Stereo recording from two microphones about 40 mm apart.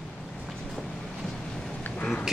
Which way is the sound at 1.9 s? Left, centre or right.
Left.